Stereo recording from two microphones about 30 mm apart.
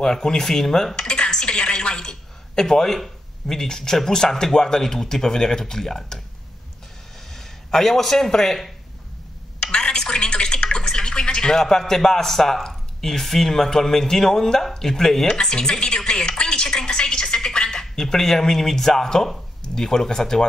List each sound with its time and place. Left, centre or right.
0.0 s speech: centre
0.9 s dishes: left
1.4 s speech: left; by 6.2 s centre
7.2 s a sound: centre
8.3 s speech: centre
9.6 s a sound: left
11.5 s speech: centre
15.5 s speech: left
16.1 s a sound: left
19.6 s speech: centre